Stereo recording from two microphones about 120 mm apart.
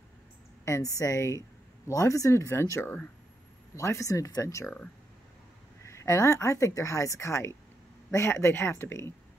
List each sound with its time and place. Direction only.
0.7 s speech: 25° left (ahead or behind)
5.9 s speech: 25° left (ahead or behind)